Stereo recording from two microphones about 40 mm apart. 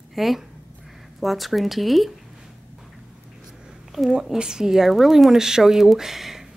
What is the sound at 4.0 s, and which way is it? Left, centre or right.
A woman's voice, centre.